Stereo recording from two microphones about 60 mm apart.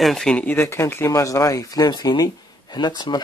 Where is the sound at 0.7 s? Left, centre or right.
Left.